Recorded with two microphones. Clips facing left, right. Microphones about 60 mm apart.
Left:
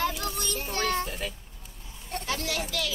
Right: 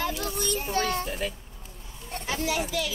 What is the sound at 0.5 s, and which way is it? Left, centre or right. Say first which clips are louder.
Speech: right 1 dB; centre.